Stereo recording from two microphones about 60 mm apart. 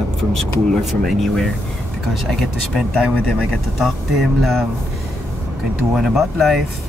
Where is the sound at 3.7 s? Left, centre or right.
Centre.